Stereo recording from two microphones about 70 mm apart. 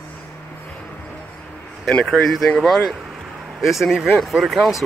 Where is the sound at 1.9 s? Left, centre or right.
Centre.